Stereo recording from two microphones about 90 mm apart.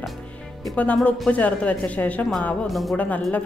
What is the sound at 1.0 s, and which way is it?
Speech, 15° left (ahead or behind).